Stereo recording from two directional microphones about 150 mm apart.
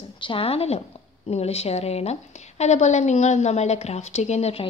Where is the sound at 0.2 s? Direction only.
35° left (ahead or behind).